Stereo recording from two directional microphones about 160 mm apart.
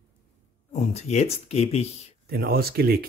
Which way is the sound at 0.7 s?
40° left (ahead or behind).